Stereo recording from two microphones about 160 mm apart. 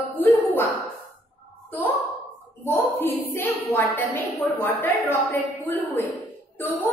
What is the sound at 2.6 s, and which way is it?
A woman's voice, 15° left (ahead or behind).